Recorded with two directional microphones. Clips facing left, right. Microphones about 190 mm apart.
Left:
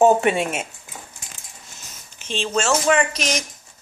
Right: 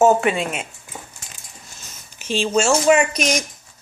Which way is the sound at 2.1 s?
10° right (ahead or behind).